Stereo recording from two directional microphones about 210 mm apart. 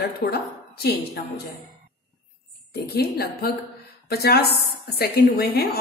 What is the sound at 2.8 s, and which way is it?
A woman's voice, 50° left (ahead or behind).